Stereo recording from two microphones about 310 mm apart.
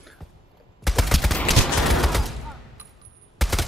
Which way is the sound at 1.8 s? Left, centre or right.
Centre.